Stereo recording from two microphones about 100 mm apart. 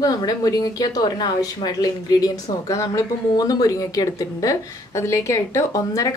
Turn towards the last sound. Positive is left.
turn(degrees=35)  # may be behind; listen again after turning